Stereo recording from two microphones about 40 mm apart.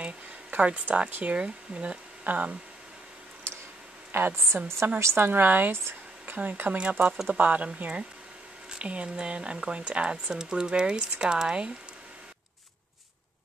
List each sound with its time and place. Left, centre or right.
0.0 s speech: right
2.2 s speech: right
4.1 s a woman's voice: right
4.7 s a woman's voice: right
5.7 s a sound: right
6.3 s speech: right
6.8 s speech: right
8.6 s speech: right